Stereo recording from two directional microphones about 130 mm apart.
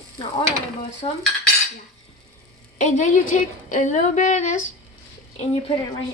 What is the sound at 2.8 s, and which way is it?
A woman's voice, 70° left (ahead or behind).